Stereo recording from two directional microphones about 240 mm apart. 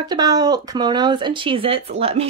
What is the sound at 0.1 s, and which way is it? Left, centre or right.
Speech, centre.